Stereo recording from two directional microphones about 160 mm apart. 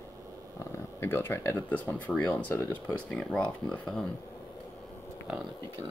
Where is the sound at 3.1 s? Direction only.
5° left (ahead or behind).